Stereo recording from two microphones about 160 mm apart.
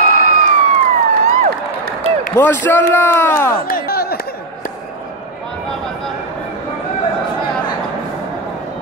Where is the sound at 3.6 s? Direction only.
70° left (ahead or behind).